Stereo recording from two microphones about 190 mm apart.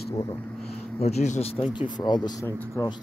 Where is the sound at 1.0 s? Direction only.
35° left (ahead or behind).